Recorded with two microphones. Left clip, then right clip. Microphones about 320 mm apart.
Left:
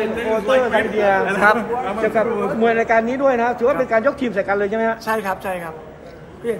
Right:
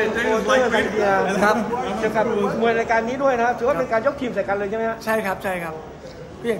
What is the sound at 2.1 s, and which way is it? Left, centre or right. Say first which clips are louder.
Speech: even; left.